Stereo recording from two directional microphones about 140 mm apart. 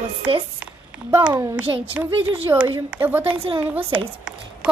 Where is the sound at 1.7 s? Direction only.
25° right (ahead or behind).